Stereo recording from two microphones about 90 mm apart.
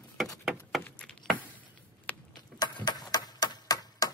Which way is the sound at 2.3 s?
50° left (ahead or behind).